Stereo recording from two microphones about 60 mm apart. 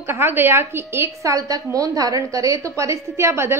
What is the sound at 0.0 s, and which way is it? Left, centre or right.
A woman's voice, right.